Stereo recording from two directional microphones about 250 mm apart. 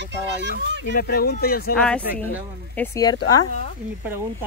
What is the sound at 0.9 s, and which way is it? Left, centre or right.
Speech, left.